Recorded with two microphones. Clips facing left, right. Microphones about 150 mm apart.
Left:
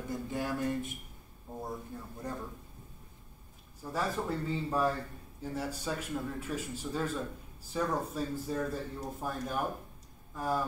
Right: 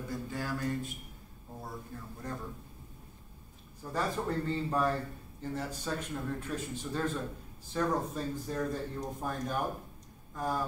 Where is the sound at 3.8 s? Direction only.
5° left (ahead or behind).